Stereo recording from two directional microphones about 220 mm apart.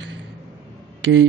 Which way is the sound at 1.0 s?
60° right (ahead or behind).